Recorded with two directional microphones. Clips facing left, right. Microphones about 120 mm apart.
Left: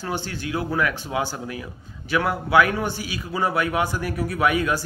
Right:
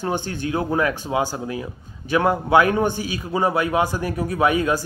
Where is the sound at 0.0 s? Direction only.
20° right (ahead or behind).